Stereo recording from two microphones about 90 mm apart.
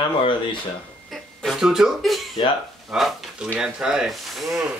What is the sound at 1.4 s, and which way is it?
Speech, 5° right (ahead or behind).